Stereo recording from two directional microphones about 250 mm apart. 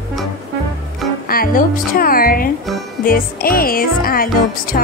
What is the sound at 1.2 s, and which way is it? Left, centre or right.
Speech, left.